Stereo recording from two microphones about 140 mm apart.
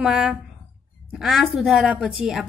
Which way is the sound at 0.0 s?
5° right (ahead or behind).